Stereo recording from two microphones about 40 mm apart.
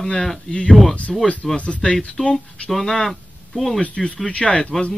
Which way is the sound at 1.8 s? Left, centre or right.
Centre.